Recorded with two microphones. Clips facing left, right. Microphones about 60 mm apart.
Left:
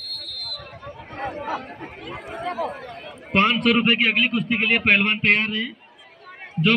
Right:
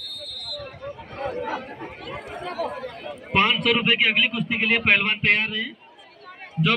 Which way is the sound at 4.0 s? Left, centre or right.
Left.